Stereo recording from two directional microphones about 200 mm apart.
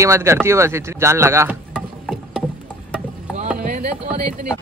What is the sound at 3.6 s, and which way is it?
Music, 45° right (ahead or behind).